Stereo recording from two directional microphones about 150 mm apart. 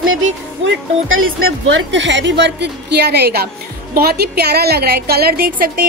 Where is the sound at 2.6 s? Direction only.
90° right.